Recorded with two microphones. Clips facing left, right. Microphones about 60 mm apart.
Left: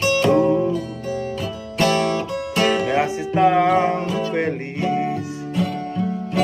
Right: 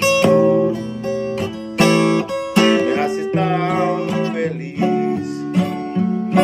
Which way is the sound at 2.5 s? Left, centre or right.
Right.